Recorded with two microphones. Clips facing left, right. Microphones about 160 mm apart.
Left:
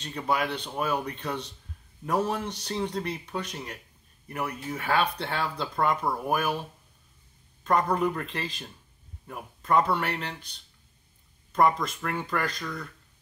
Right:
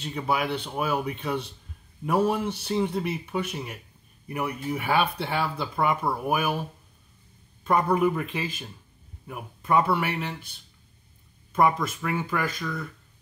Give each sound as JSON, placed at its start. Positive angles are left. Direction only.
{"t": 0.0, "sound": "speech", "side_deg": -10}
{"t": 7.6, "sound": "speech", "side_deg": -10}